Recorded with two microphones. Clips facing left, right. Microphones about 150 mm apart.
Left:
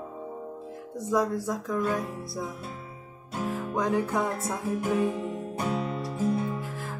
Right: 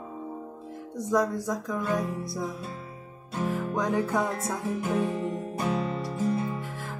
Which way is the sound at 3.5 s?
Centre (ahead or behind).